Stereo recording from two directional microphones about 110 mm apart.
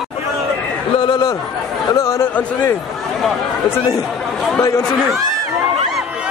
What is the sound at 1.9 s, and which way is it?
Speech, 25° left (ahead or behind).